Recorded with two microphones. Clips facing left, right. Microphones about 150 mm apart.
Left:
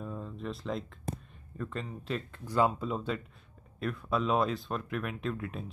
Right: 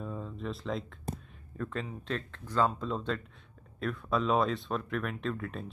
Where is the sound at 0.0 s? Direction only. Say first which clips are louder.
Right 1 dB; centre (ahead or behind).